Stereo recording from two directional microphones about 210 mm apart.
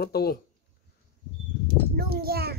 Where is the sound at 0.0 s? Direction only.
50° left (ahead or behind).